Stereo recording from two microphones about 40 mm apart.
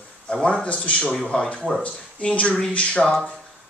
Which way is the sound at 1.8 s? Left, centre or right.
Left.